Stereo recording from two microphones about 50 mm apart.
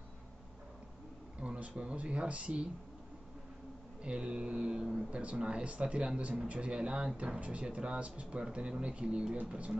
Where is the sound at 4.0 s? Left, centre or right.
Right.